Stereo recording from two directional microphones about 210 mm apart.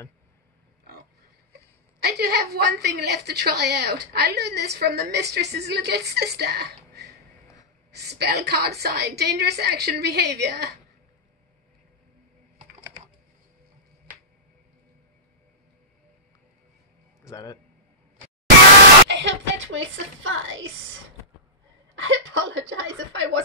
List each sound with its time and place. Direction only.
2.0 s a woman's voice: 50° right (ahead or behind)
17.2 s a man's voice: 15° left (ahead or behind)
19.0 s speech: 55° right (ahead or behind)
21.9 s a woman's voice: 65° right (ahead or behind)